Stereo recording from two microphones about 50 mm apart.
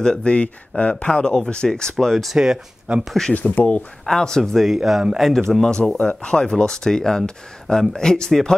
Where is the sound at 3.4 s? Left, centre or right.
Left.